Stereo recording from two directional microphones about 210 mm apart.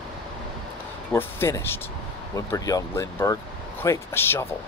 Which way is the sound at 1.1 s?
10° left (ahead or behind).